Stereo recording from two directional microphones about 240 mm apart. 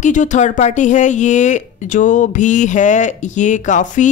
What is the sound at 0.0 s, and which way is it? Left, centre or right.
Speech, left.